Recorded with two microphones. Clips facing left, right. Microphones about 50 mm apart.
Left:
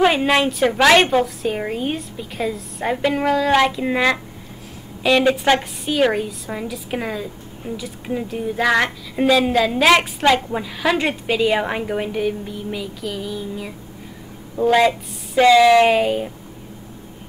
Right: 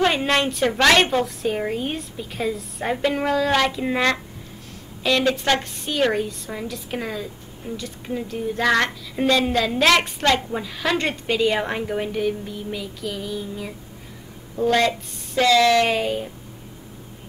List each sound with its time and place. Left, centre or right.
0.0 s a woman's voice: centre